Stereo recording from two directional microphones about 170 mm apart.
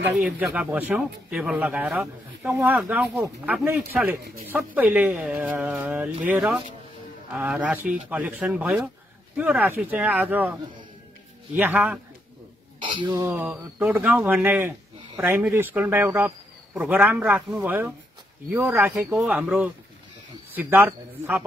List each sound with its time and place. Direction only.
0.1 s speech: 10° right (ahead or behind)
12.8 s a sound: 30° right (ahead or behind)
13.1 s speech: 10° right (ahead or behind)